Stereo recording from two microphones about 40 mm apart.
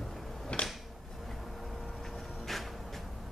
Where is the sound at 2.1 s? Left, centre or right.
Centre.